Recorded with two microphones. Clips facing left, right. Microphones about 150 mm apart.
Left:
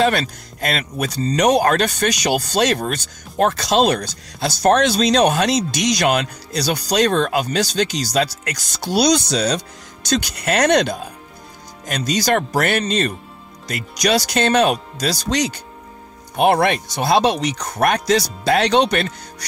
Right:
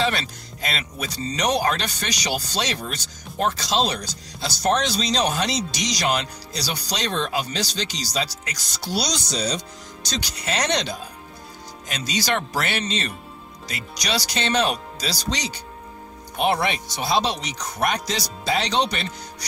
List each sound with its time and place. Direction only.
0.0 s speech: 50° left (ahead or behind)
10.0 s speech: 55° left (ahead or behind)